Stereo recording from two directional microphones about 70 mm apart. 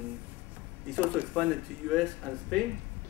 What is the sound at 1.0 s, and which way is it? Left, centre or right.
Speech, right.